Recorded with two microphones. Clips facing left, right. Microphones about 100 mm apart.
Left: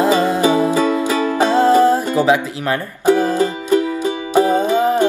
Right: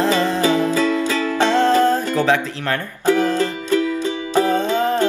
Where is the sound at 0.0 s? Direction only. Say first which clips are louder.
Left 3 dB; 15° left (ahead or behind).